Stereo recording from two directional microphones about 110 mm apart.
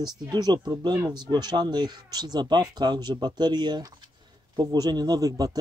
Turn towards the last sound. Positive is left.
turn(degrees=-35)  # may be behind; listen again after turning